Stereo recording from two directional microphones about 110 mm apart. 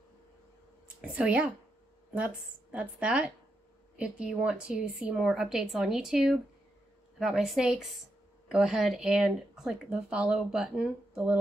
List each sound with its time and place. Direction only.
1.0 s a woman's voice: 10° right (ahead or behind)